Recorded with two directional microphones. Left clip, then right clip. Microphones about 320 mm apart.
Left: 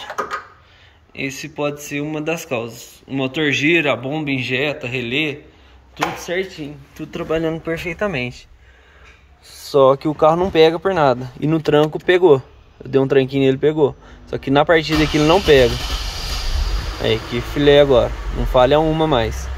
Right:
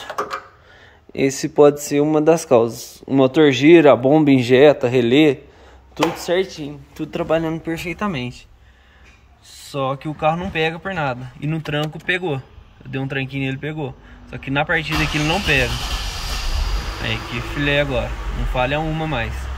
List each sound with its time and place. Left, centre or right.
1.2 s speech: centre
9.7 s speech: centre
17.0 s speech: centre